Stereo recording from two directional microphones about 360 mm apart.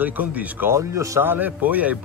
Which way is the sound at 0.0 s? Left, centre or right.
Centre.